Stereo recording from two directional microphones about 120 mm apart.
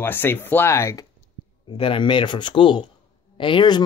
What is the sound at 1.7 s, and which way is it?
Speech, 45° left (ahead or behind).